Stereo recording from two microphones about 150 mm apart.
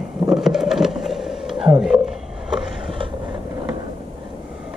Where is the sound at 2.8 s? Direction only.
35° right (ahead or behind).